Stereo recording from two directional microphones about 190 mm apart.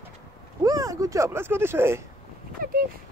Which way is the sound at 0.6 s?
20° right (ahead or behind).